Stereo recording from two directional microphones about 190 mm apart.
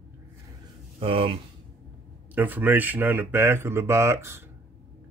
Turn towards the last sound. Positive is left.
turn(degrees=-15)  # may be behind; listen again after turning